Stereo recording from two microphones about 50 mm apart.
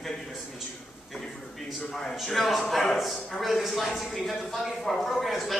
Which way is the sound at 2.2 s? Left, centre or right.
Centre.